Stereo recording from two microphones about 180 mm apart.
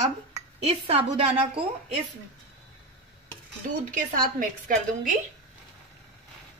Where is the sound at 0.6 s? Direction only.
35° right (ahead or behind).